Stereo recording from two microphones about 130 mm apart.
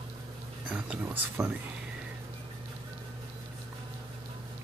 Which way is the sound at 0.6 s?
10° right (ahead or behind).